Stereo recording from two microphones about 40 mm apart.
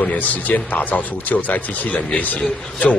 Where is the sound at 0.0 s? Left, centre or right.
Left.